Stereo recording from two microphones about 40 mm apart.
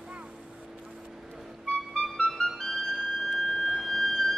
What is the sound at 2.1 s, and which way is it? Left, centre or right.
Music, centre.